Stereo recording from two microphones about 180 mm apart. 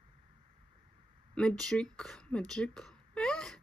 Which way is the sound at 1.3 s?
5° left (ahead or behind).